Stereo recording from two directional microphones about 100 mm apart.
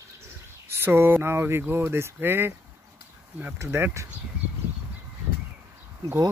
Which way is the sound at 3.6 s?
25° right (ahead or behind).